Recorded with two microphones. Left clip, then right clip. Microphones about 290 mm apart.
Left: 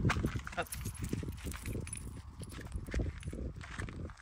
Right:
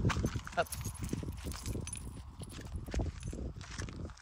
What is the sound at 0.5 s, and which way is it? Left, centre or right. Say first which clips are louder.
Keys jangling: right 5 dB; right.